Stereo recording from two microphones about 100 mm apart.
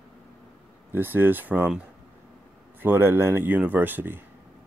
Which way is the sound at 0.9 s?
20° right (ahead or behind).